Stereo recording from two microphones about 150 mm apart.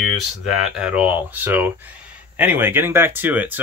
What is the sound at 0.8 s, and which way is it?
Speech, 10° right (ahead or behind).